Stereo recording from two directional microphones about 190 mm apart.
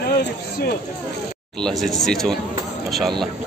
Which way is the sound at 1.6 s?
Centre (ahead or behind).